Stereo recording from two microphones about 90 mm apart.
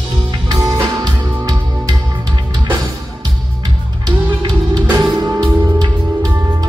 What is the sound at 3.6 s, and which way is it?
Music, 50° right (ahead or behind).